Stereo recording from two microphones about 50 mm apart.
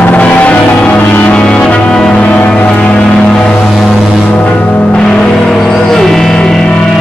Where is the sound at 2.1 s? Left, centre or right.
Left.